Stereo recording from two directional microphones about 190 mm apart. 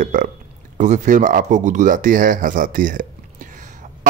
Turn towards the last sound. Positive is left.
turn(degrees=-45)  # may be behind; listen again after turning